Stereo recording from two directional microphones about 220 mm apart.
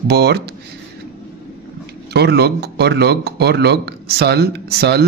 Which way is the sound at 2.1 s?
50° right (ahead or behind).